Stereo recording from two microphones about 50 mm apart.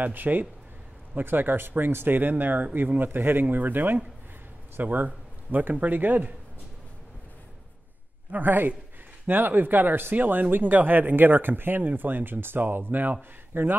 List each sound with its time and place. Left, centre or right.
0.0 s speech: right
8.3 s speech: right